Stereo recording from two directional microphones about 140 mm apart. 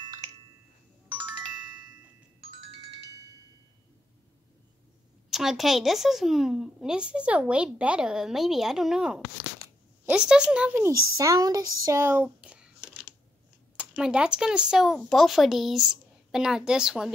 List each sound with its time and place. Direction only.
0.0 s a sound: 30° right (ahead or behind)
5.3 s a woman's voice: centre (ahead or behind)
11.1 s a woman's voice: 25° right (ahead or behind); by 17.1 s 5° right (ahead or behind)